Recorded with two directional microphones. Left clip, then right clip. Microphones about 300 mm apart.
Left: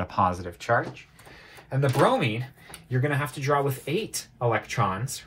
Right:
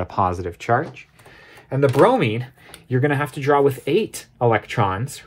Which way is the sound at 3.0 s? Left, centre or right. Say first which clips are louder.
Right 7 dB; right.